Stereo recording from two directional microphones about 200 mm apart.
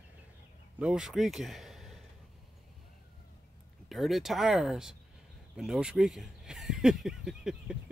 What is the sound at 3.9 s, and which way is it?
Speech, centre (ahead or behind).